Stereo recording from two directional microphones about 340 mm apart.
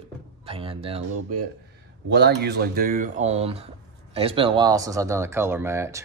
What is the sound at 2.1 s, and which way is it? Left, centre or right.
Speech, right.